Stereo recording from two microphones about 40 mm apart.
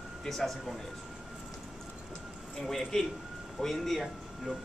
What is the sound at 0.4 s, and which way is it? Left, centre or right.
Speech, centre.